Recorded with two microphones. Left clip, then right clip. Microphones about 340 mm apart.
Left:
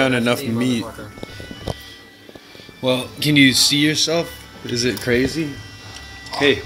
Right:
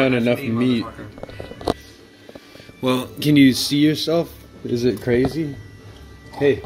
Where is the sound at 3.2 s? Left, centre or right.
Centre.